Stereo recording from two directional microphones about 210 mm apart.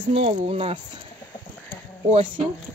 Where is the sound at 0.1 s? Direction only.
25° right (ahead or behind).